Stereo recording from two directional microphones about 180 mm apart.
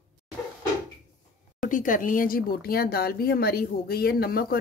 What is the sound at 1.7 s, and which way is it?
Speech, 45° left (ahead or behind).